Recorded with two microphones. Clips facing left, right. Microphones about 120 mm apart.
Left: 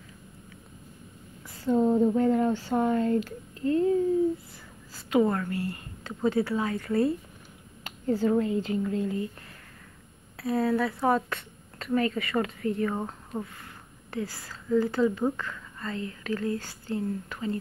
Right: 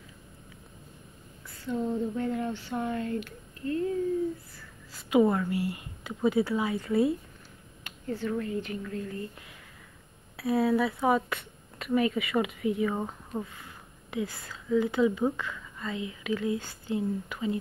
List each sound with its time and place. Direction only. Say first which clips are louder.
1.6 s speech: left 8 dB; 40° left (ahead or behind)
5.1 s speech: right 1 dB; 15° right (ahead or behind)
6.0 s a woman's voice: even; 5° right (ahead or behind)
7.8 s a sound: left 7 dB; 35° left (ahead or behind)
8.5 s a woman's voice: left 6 dB; 30° left (ahead or behind)
10.3 s a woman's voice: right 1 dB; 5° right (ahead or behind)